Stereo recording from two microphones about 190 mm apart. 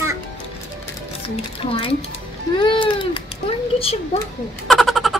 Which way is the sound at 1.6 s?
30° left (ahead or behind).